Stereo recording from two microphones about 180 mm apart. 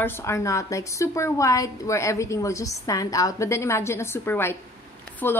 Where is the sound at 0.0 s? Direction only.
15° left (ahead or behind).